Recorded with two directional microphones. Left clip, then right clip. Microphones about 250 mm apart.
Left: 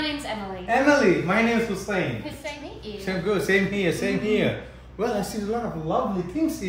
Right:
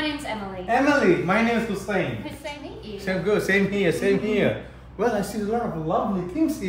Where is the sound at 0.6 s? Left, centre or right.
Centre.